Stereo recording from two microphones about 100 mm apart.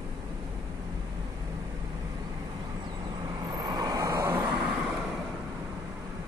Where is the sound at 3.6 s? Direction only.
40° right (ahead or behind); by 4.4 s 25° right (ahead or behind).